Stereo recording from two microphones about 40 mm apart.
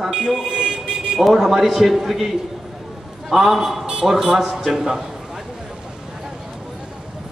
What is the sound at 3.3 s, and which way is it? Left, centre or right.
Speech, centre.